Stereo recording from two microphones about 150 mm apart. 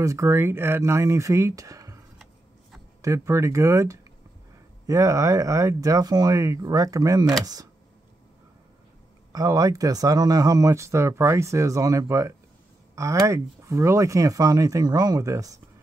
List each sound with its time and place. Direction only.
0.0 s speech: 20° right (ahead or behind)
3.0 s speech: 20° right (ahead or behind)
9.3 s speech: 20° right (ahead or behind)